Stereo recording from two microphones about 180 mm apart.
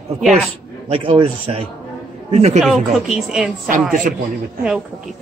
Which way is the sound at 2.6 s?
Centre (ahead or behind).